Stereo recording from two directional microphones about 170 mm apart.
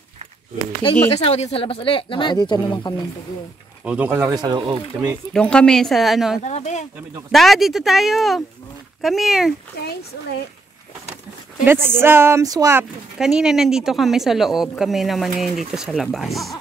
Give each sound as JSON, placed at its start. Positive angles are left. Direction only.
{"t": 1.1, "sound": "speech", "side_deg": 40}
{"t": 3.8, "sound": "speech", "side_deg": -10}
{"t": 5.3, "sound": "a woman's voice", "side_deg": 5}
{"t": 6.4, "sound": "speech", "side_deg": 40}
{"t": 7.2, "sound": "a woman's voice", "side_deg": 0}
{"t": 11.6, "sound": "speech", "side_deg": -15}
{"t": 13.2, "sound": "a woman's voice", "side_deg": -5}